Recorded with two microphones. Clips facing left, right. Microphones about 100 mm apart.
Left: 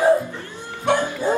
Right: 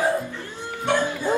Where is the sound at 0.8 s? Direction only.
20° left (ahead or behind).